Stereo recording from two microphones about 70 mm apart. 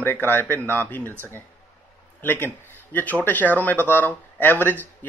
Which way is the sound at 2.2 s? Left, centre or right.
Left.